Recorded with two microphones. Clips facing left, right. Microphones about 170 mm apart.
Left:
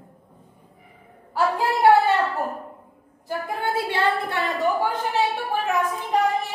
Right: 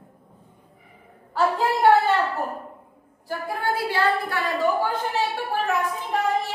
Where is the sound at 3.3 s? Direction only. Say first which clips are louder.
Even; 25° left (ahead or behind).